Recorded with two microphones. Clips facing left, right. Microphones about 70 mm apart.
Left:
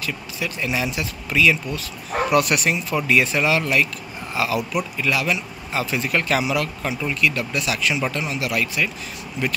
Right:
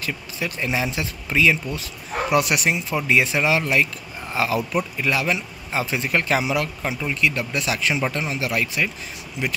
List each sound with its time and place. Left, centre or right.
0.0 s speech: right